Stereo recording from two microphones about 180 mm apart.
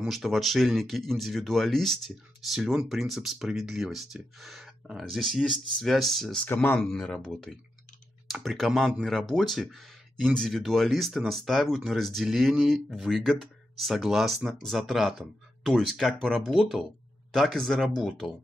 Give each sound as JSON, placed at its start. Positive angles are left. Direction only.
{"t": 0.0, "sound": "speech", "side_deg": 0}